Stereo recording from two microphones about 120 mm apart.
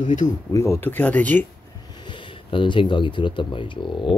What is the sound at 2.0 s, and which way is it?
Speech, 40° left (ahead or behind).